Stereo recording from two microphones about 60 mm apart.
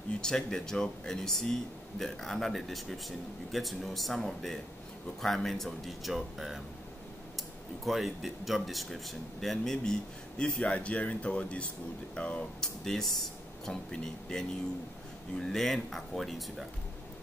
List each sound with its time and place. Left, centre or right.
0.2 s speech: centre
12.8 s speech: centre